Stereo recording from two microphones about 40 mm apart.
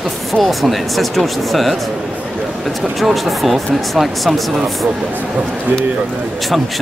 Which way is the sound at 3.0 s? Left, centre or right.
Centre.